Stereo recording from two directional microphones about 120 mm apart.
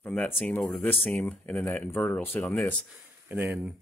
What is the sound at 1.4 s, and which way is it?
Speech, 20° left (ahead or behind).